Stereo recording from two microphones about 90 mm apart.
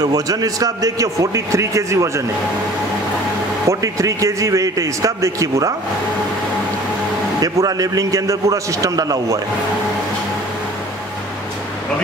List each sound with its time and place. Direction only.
0.0 s a man's voice: 45° right (ahead or behind)
3.6 s a man's voice: 35° right (ahead or behind)
7.3 s a man's voice: 45° right (ahead or behind)